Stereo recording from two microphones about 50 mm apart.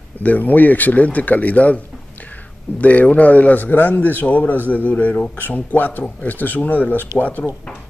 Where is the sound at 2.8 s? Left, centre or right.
Left.